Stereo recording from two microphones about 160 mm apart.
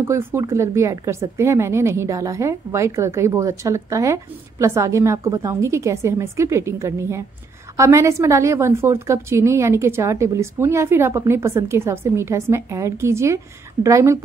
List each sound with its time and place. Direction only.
0.0 s a woman's voice: 15° right (ahead or behind)